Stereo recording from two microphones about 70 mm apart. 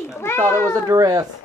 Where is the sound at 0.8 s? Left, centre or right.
Right.